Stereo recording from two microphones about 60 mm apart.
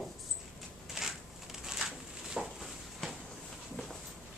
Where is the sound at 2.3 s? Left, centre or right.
Centre.